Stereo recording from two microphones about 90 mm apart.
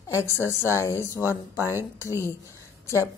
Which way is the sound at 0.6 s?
30° left (ahead or behind).